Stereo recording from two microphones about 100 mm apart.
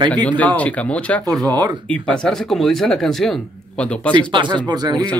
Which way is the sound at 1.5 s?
40° right (ahead or behind).